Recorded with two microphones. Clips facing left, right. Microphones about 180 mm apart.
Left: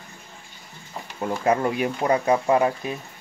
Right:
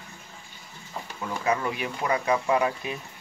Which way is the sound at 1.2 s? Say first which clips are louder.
Left 5 dB; 45° left (ahead or behind).